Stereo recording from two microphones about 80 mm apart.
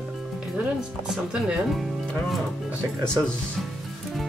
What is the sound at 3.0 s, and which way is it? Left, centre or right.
Speech, centre.